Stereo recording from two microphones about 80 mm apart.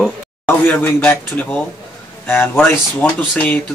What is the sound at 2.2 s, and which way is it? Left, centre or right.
Speech, left.